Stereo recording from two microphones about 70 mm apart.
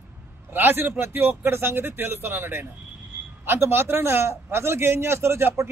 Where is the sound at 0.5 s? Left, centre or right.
Right.